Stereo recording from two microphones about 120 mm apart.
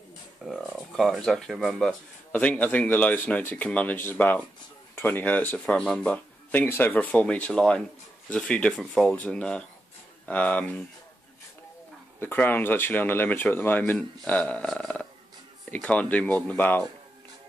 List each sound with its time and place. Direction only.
0.4 s speech: 5° right (ahead or behind)
2.3 s speech: 10° left (ahead or behind)
12.2 s speech: 15° left (ahead or behind)